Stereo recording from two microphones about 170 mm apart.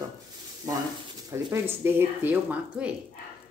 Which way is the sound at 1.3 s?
15° right (ahead or behind).